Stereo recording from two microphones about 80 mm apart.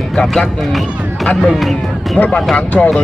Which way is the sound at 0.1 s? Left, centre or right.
Centre.